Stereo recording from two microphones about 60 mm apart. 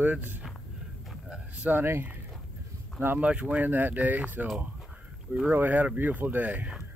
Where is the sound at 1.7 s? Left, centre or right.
Right.